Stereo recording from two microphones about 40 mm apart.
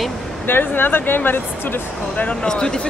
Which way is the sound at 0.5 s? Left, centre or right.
Left.